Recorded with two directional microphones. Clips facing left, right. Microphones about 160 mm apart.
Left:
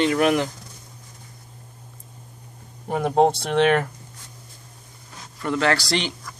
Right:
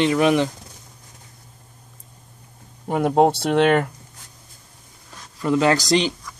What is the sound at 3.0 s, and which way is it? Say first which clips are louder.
Speech: right 2 dB; 5° right (ahead or behind).